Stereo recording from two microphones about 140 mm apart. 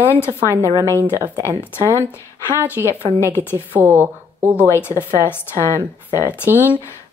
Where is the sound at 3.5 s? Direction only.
15° right (ahead or behind).